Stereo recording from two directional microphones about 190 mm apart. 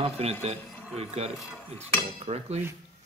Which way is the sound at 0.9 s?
35° right (ahead or behind).